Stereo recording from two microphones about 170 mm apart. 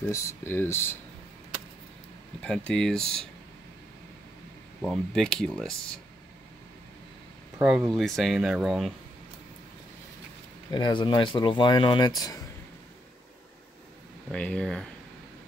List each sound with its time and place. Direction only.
0.1 s speech: 15° left (ahead or behind)
2.4 s speech: 5° left (ahead or behind)
4.8 s speech: centre (ahead or behind)
7.6 s speech: 5° right (ahead or behind)
10.7 s speech: 25° left (ahead or behind)
14.3 s speech: 5° left (ahead or behind)